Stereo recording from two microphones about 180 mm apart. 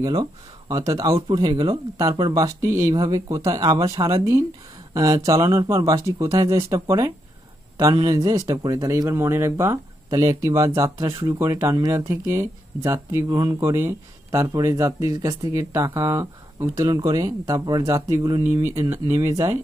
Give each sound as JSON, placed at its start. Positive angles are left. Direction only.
{"t": 0.0, "sound": "speech", "side_deg": -20}